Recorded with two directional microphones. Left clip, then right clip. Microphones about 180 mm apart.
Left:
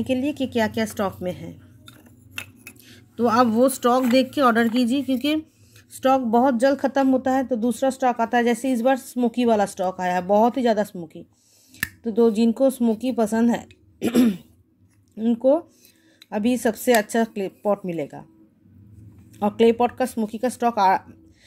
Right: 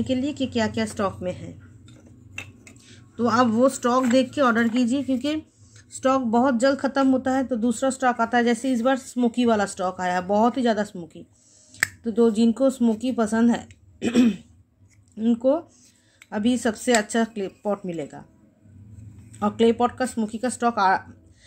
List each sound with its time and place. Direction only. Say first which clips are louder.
0.0 s speech: left 2 dB; 30° left (ahead or behind)
2.9 s speech: left 2 dB; 30° left (ahead or behind)
19.3 s speech: left 2 dB; 25° left (ahead or behind)